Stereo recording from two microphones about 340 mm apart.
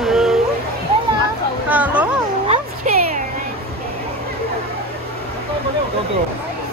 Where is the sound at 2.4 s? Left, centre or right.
Centre.